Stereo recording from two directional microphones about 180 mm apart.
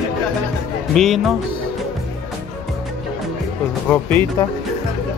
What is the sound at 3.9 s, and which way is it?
Speech, 10° left (ahead or behind).